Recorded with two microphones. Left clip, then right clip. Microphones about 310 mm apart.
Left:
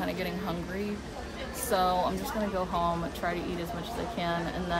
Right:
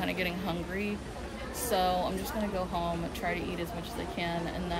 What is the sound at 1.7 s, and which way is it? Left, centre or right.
A woman's voice, centre.